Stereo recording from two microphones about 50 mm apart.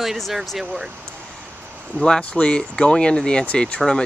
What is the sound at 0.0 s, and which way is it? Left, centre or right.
Speech, centre.